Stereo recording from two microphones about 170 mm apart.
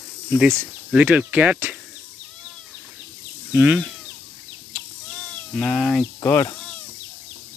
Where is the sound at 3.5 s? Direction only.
10° right (ahead or behind).